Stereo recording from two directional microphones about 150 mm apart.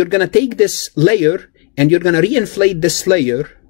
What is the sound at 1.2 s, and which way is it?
Speech, 20° left (ahead or behind).